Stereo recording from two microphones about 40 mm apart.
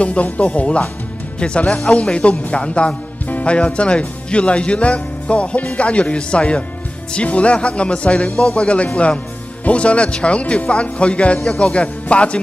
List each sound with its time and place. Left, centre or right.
0.0 s speech: left
1.9 s speech: left
8.3 s speech: centre
8.5 s speech: left